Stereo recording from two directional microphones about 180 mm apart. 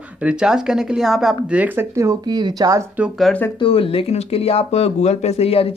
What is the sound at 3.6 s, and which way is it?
Speech, 30° left (ahead or behind).